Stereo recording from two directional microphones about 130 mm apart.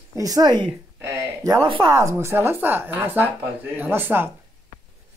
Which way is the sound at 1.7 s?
40° right (ahead or behind).